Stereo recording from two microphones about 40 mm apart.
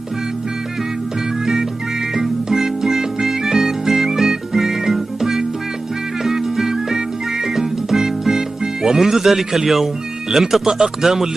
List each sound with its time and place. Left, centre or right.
1.4 s music: centre
10.3 s speech: centre